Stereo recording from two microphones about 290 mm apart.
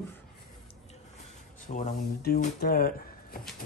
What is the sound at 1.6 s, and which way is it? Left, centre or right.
Speech, left.